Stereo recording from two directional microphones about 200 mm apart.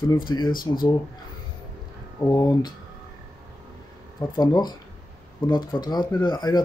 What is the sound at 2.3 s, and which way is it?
Speech, 20° left (ahead or behind).